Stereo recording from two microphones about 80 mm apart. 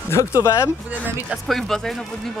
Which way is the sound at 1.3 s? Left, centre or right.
Centre.